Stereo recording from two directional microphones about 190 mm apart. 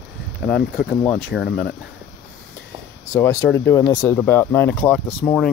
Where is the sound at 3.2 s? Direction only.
15° left (ahead or behind).